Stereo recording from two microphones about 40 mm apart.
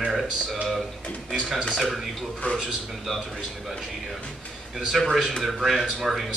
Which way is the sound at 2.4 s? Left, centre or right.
Left.